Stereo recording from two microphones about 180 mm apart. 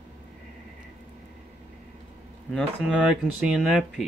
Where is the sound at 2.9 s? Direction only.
5° right (ahead or behind).